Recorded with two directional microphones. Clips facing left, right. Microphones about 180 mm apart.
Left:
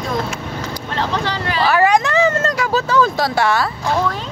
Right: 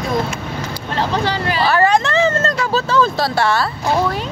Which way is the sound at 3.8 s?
10° right (ahead or behind).